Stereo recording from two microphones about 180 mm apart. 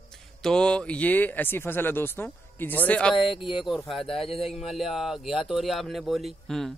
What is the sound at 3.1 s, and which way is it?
Speech, 30° left (ahead or behind).